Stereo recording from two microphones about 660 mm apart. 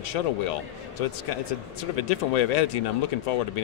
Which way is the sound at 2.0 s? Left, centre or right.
Left.